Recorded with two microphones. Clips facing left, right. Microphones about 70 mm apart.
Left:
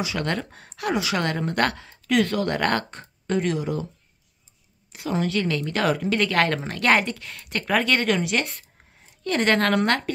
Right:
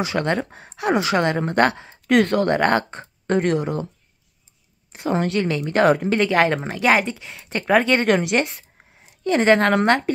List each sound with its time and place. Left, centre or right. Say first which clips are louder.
0.2 s speech: right 5 dB; right
0.9 s speech: right 6 dB; right
1.4 s speech: right 5 dB; right
2.0 s speech: right 5 dB; right
3.3 s speech: right 4 dB; right
4.9 s speech: right 3 dB; right
5.4 s speech: right 6 dB; right
6.1 s a woman's voice: right 4 dB; centre
9.2 s speech: right 5 dB; centre